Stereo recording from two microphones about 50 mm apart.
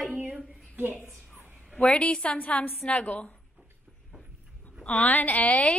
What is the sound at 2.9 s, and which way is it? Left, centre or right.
Speech, left.